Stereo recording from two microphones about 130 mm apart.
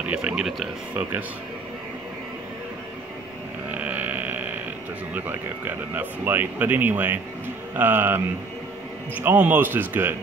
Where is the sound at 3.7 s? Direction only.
10° right (ahead or behind).